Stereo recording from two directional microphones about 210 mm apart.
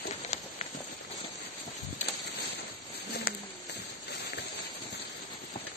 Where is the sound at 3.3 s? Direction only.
45° left (ahead or behind).